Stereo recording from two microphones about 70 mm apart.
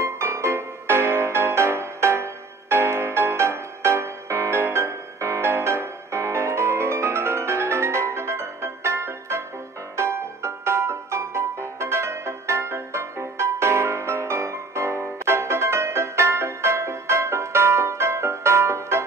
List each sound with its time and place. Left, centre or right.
0.0 s music: right